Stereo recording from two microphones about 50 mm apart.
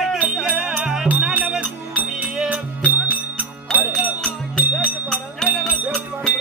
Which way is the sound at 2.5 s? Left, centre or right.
Right.